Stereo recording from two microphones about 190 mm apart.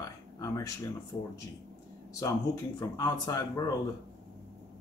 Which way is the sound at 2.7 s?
20° left (ahead or behind).